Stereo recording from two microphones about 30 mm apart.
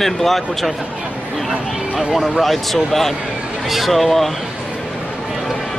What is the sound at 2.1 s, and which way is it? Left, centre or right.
Speech, centre.